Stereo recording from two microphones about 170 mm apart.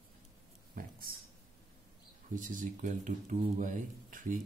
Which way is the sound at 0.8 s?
55° right (ahead or behind).